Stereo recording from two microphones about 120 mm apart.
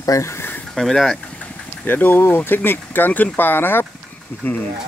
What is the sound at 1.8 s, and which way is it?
Speech, 15° left (ahead or behind).